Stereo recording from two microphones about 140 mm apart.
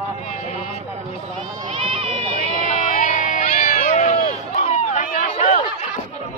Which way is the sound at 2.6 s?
65° left (ahead or behind).